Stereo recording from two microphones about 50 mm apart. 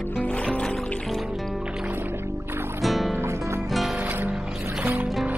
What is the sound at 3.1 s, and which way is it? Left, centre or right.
Music, right.